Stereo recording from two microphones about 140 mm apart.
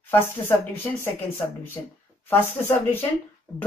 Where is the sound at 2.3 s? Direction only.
15° left (ahead or behind).